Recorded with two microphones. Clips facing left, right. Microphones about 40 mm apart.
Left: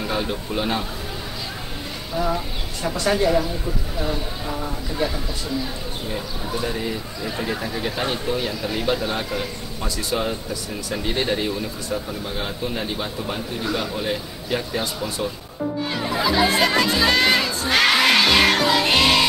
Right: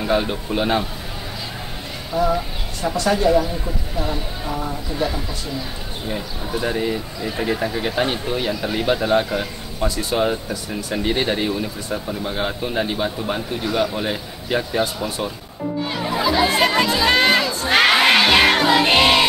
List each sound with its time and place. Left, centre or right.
0.0 s speech: centre
2.2 s speech: centre
6.0 s speech: centre
6.6 s speech: centre
6.9 s speech: centre
15.9 s music: centre
16.8 s speech: centre
17.1 s crowd: right
17.4 s crowd: centre
17.6 s music: centre